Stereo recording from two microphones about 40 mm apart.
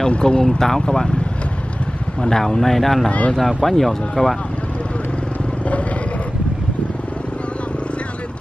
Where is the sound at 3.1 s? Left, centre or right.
Left.